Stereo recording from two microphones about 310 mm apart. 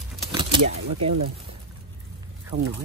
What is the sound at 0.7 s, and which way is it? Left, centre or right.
Speech, right.